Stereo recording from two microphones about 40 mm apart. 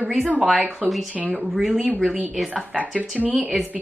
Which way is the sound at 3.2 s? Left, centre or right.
Right.